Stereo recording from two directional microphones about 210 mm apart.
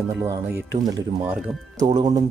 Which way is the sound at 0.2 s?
15° right (ahead or behind).